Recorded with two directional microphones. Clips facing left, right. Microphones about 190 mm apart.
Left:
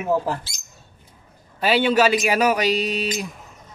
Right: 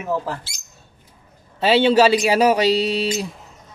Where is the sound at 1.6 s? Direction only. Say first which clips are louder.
Right 3 dB; 25° right (ahead or behind).